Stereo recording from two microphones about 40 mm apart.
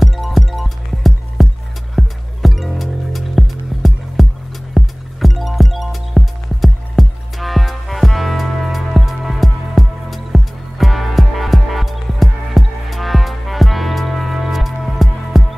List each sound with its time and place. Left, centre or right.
0.0 s music: centre